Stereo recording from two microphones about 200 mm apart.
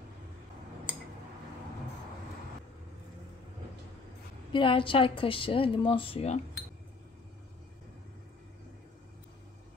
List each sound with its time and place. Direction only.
4.5 s speech: 25° left (ahead or behind)